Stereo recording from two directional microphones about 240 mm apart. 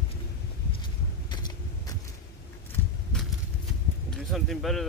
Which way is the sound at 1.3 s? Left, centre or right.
Centre.